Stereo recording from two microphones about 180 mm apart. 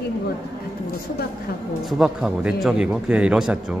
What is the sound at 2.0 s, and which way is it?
A man's voice, 5° right (ahead or behind).